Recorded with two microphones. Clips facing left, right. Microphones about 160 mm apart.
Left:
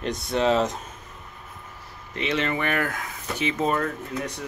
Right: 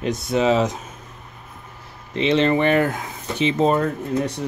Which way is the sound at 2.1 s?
25° right (ahead or behind).